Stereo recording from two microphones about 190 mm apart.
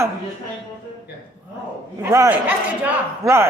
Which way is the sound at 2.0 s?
15° right (ahead or behind).